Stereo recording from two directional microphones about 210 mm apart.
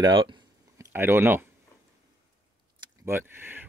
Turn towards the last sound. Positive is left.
turn(degrees=-10)  # may be behind; listen again after turning